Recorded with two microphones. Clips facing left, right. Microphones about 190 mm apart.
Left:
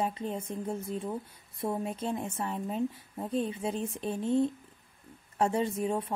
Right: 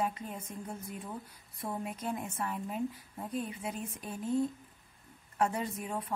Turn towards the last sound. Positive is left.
turn(degrees=25)  # may be behind; listen again after turning